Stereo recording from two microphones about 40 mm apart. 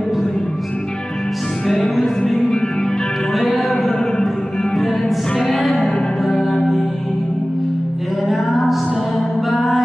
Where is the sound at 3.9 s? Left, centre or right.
Centre.